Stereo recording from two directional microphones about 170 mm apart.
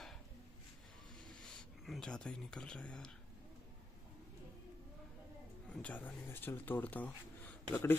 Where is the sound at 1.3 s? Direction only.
5° left (ahead or behind).